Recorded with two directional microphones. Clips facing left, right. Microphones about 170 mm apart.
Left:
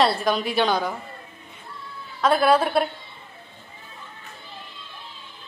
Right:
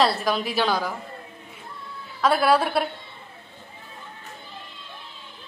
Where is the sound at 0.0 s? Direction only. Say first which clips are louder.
Left 1 dB; centre (ahead or behind).